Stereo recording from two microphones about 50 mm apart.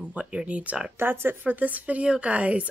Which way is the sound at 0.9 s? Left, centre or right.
Right.